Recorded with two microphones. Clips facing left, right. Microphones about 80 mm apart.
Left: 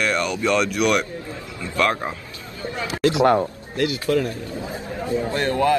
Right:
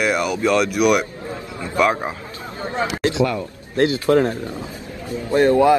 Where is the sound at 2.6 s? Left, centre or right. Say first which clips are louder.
Even; right.